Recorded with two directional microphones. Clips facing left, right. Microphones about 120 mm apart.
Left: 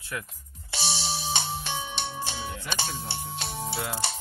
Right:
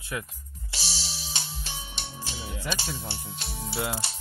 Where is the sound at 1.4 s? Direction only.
60° left (ahead or behind).